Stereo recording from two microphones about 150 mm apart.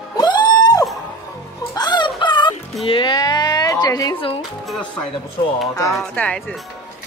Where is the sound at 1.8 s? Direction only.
30° left (ahead or behind).